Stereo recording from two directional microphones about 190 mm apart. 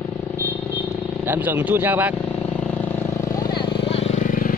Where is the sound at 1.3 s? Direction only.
10° right (ahead or behind).